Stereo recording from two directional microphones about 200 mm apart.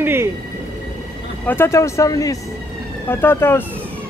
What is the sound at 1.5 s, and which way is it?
Speech, 15° left (ahead or behind).